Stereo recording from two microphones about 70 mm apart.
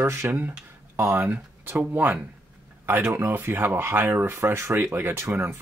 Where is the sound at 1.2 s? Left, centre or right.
Right.